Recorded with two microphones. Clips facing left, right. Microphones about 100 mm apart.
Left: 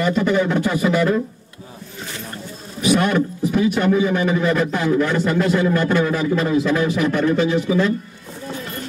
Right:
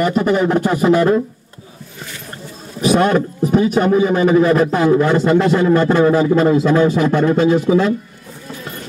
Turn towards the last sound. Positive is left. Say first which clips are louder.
# right 5 dB
turn(degrees=-40)  # may be behind; listen again after turning